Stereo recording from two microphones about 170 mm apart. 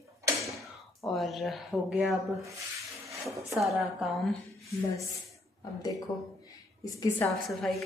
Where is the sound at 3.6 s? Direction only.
Centre (ahead or behind).